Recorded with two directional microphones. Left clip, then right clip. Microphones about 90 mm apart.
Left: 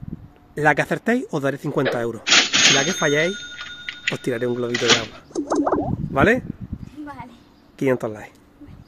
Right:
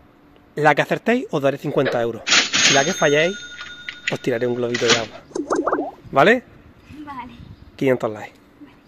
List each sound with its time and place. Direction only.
0.6 s speech: 15° left (ahead or behind)
1.8 s speech: centre (ahead or behind)
2.2 s cash register: centre (ahead or behind)
4.3 s a sound: 5° left (ahead or behind)
7.8 s speech: 10° left (ahead or behind)